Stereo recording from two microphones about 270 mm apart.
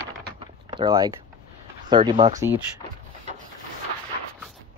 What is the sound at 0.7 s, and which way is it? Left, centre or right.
Speech, centre.